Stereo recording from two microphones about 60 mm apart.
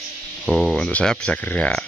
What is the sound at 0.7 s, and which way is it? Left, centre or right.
Speech, centre.